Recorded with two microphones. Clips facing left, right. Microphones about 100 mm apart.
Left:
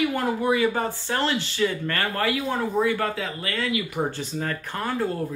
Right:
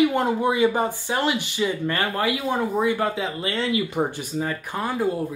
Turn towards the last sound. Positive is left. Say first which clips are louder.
# right 2 dB
turn(degrees=-15)  # may be behind; listen again after turning